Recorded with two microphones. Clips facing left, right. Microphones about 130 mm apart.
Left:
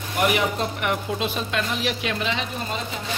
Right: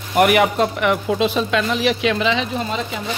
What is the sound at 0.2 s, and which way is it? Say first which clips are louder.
Speech: right 8 dB; 65° right (ahead or behind).